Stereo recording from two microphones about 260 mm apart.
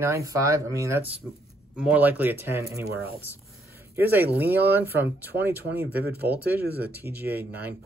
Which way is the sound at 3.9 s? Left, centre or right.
Centre.